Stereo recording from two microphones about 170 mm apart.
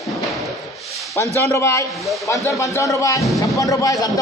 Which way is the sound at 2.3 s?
20° left (ahead or behind).